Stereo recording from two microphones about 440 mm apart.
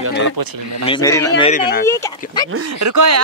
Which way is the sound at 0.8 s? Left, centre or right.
Centre.